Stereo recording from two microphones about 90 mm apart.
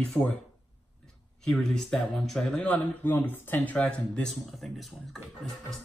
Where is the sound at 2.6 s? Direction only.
20° left (ahead or behind).